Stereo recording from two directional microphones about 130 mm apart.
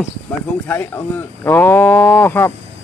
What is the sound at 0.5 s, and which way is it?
A man's voice, 15° left (ahead or behind).